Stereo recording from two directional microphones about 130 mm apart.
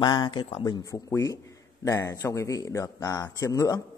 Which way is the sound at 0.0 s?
35° left (ahead or behind).